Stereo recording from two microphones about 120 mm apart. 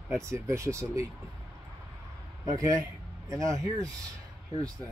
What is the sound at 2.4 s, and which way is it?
Speech, 30° right (ahead or behind).